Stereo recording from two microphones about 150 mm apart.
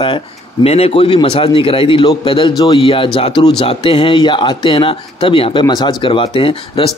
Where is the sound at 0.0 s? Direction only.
35° left (ahead or behind).